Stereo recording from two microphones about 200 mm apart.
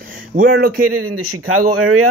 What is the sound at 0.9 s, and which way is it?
Speech, 90° right.